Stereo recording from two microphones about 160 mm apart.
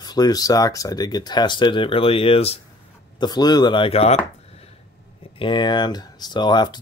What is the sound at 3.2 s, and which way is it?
Speech, 25° left (ahead or behind).